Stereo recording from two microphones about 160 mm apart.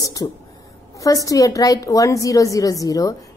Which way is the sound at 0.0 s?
20° left (ahead or behind).